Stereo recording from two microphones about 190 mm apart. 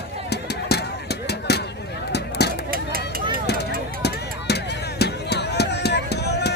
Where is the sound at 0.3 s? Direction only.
60° left (ahead or behind).